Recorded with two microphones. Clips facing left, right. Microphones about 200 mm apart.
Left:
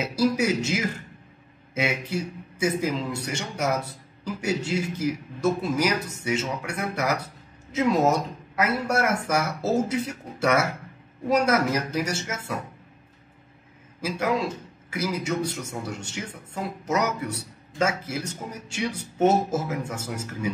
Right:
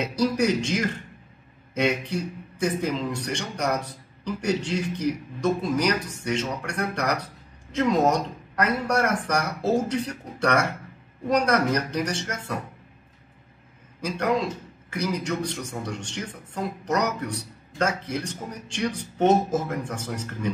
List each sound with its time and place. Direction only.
0.0 s speech: 5° left (ahead or behind)
14.0 s speech: 5° left (ahead or behind)